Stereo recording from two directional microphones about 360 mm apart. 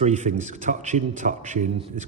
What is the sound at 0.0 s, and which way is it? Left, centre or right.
A man's voice, centre.